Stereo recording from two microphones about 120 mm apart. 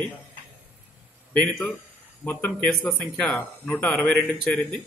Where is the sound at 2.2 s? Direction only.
15° left (ahead or behind).